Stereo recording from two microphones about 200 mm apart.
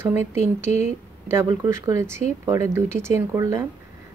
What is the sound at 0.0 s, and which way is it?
Speech, 10° right (ahead or behind).